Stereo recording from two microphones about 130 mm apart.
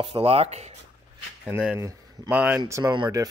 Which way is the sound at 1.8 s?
25° right (ahead or behind).